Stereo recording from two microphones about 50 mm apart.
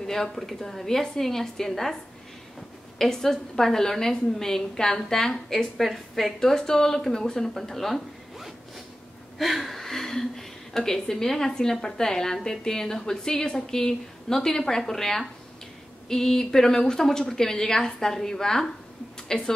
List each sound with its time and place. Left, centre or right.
0.0 s a woman's voice: centre
3.0 s a woman's voice: centre